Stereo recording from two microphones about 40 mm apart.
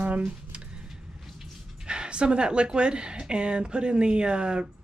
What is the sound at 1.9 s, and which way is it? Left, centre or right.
Speech, right.